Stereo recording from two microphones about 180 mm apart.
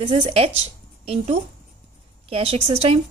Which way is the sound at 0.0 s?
35° right (ahead or behind).